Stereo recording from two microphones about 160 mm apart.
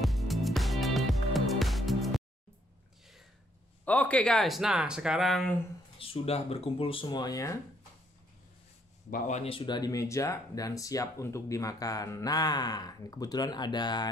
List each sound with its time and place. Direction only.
0.0 s music: centre (ahead or behind)
3.8 s speech: 10° left (ahead or behind)
5.9 s speech: 35° left (ahead or behind)
9.4 s speech: 35° left (ahead or behind)